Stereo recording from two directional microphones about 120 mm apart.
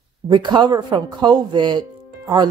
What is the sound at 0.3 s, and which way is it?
Speech, 40° right (ahead or behind).